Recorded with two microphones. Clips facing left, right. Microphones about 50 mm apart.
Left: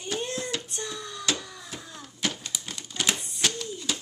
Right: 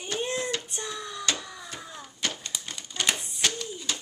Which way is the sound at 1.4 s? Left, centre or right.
Centre.